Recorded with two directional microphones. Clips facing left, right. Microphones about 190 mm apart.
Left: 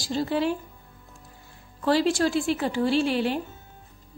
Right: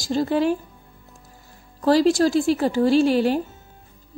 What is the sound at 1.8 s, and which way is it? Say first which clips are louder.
Speech: right 5 dB; 40° right (ahead or behind).